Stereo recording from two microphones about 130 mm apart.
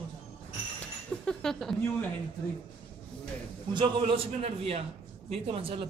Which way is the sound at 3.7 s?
40° right (ahead or behind).